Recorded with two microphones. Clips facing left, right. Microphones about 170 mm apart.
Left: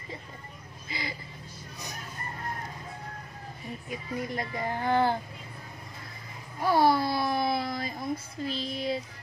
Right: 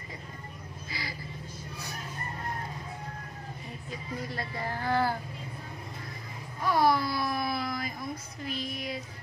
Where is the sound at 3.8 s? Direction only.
20° left (ahead or behind).